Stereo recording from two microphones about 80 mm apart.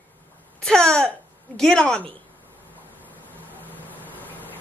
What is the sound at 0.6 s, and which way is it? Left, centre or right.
Speech, centre.